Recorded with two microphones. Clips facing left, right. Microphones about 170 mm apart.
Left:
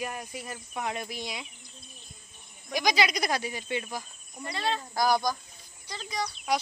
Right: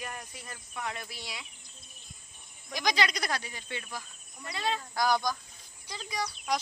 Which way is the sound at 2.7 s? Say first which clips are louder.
Left 3 dB; 10° left (ahead or behind).